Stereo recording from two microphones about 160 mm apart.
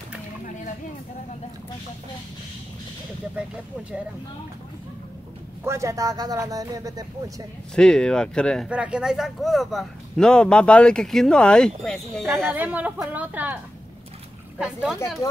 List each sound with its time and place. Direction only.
5.6 s speech: 15° right (ahead or behind)
7.7 s speech: 5° left (ahead or behind)
8.6 s speech: 5° right (ahead or behind)
12.5 s a woman's voice: 10° right (ahead or behind)
14.6 s speech: 5° right (ahead or behind)